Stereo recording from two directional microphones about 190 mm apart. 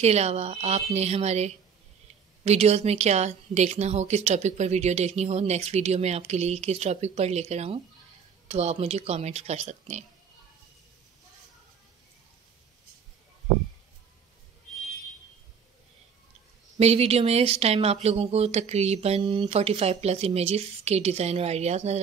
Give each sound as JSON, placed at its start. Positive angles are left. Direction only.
{"t": 0.0, "sound": "a woman's voice", "side_deg": -35}
{"t": 16.8, "sound": "a woman's voice", "side_deg": -35}